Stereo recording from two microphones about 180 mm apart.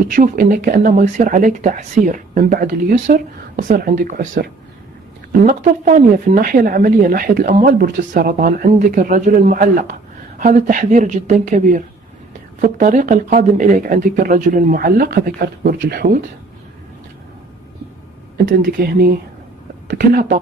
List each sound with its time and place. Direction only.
0.1 s speech: 50° right (ahead or behind)
18.4 s speech: 50° right (ahead or behind)